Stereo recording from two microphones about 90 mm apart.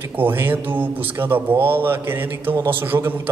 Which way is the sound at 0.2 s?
20° right (ahead or behind).